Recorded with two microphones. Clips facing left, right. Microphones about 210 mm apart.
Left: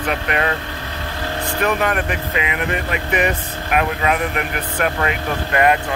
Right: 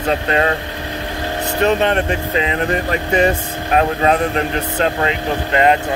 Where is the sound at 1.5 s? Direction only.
25° right (ahead or behind).